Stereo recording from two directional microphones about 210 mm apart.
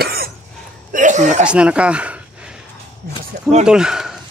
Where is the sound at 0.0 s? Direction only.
45° right (ahead or behind).